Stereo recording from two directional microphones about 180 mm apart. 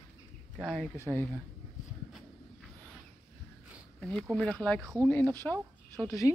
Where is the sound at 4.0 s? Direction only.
Centre (ahead or behind).